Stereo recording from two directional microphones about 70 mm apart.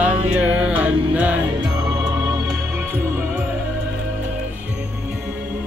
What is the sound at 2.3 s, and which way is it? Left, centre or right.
Music, right.